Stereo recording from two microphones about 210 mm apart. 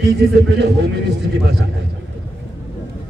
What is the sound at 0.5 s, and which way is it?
Speech, 55° right (ahead or behind).